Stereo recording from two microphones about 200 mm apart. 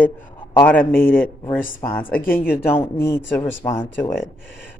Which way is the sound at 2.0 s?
45° left (ahead or behind).